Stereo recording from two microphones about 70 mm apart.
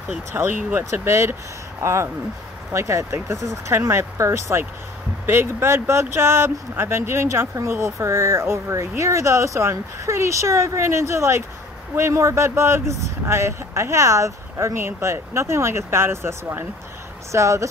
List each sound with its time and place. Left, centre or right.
0.3 s speech: right
5.2 s speech: right
17.3 s speech: right